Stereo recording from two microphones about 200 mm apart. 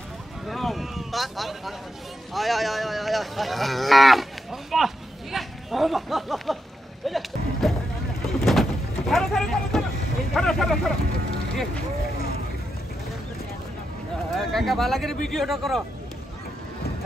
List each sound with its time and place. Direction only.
0.5 s a sound: centre (ahead or behind)
2.3 s speech: centre (ahead or behind)
7.1 s a sound: centre (ahead or behind)
8.5 s vehicle: centre (ahead or behind)
10.3 s speech: centre (ahead or behind)
14.3 s speech: centre (ahead or behind)